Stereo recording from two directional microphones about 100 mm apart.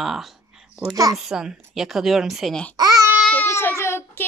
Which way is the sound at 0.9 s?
35° right (ahead or behind).